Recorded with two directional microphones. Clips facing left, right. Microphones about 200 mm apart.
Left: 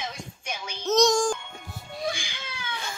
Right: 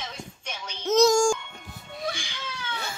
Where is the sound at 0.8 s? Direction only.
5° right (ahead or behind).